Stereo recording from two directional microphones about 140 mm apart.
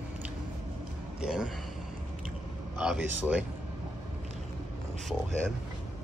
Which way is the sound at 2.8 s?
10° right (ahead or behind).